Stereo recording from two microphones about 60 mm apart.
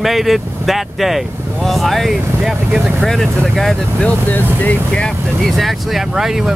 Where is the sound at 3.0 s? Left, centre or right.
Centre.